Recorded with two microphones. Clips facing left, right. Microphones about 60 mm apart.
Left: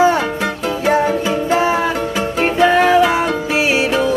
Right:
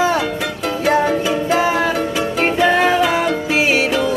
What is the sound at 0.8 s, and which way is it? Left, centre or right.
Music, centre.